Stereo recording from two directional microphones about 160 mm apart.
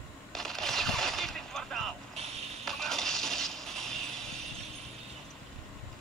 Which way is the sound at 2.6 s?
Centre (ahead or behind).